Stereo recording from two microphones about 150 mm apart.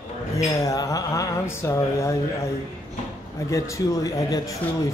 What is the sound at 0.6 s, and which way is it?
Speech, 20° left (ahead or behind).